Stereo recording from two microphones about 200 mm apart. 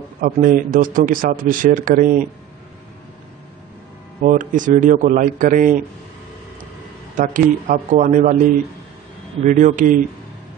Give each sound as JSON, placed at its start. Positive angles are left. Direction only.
{"t": 0.2, "sound": "speech", "side_deg": -45}
{"t": 4.2, "sound": "a man's voice", "side_deg": -40}
{"t": 7.2, "sound": "a man's voice", "side_deg": -40}
{"t": 9.5, "sound": "a man's voice", "side_deg": -40}